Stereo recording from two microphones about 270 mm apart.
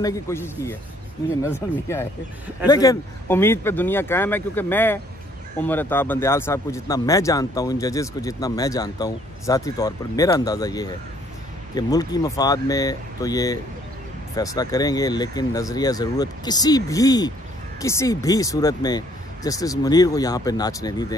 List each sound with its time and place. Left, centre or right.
0.0 s speech: centre